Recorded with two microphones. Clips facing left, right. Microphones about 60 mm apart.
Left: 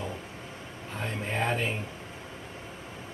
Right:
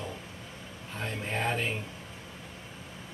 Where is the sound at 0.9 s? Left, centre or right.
Centre.